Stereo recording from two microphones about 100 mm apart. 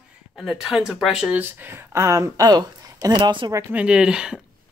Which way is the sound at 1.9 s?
30° right (ahead or behind).